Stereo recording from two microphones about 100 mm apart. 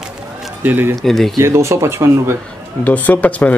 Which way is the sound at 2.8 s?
15° left (ahead or behind).